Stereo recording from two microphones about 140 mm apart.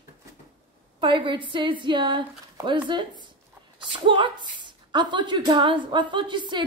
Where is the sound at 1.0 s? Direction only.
35° right (ahead or behind).